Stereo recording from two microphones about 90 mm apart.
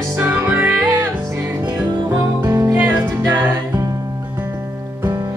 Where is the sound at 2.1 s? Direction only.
30° right (ahead or behind).